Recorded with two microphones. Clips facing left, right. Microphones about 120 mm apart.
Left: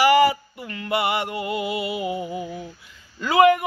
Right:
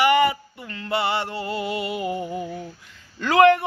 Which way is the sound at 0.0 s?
20° right (ahead or behind).